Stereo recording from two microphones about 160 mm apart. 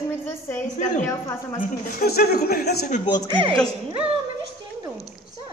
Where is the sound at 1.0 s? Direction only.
20° left (ahead or behind).